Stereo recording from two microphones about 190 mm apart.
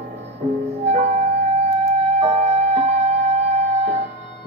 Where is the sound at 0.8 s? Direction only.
35° right (ahead or behind).